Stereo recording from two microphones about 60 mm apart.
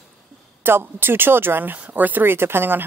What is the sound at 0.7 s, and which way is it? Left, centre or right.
Speech, right.